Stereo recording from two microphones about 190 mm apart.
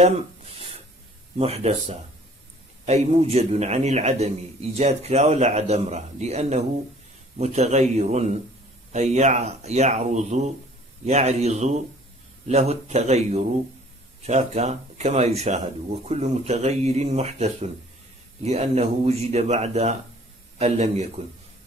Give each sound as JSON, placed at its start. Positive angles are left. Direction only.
{"t": 1.4, "sound": "a man's voice", "side_deg": -35}